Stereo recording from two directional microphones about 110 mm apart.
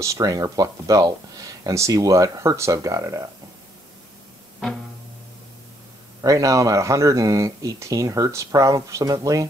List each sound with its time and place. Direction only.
0.0 s speech: 30° right (ahead or behind)
6.2 s speech: 30° right (ahead or behind)